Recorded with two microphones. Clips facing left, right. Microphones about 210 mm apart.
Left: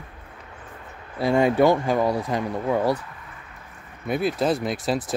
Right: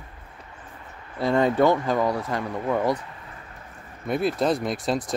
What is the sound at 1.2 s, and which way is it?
Speech, 10° left (ahead or behind).